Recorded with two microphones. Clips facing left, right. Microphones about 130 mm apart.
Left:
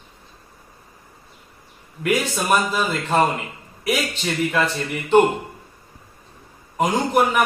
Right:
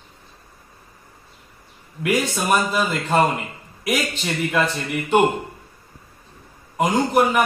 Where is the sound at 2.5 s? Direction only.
Centre (ahead or behind).